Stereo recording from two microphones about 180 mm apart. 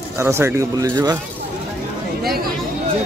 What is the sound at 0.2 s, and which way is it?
Speech, 15° right (ahead or behind).